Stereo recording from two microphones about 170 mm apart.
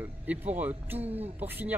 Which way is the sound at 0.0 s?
10° right (ahead or behind).